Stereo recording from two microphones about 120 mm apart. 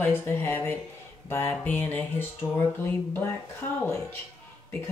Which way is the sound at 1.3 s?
15° left (ahead or behind).